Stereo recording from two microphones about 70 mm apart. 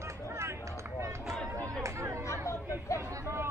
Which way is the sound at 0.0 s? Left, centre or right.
Right.